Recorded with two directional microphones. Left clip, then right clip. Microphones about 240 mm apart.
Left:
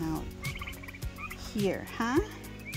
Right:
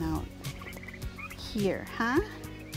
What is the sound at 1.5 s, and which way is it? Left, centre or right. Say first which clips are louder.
Speech: right 1 dB; centre.